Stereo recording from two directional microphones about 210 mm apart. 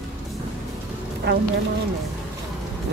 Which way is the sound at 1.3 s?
50° right (ahead or behind).